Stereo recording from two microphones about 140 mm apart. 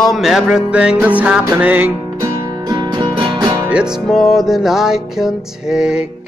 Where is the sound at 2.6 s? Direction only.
35° right (ahead or behind).